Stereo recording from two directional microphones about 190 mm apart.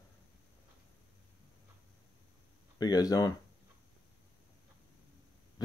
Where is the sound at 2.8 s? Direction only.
20° left (ahead or behind).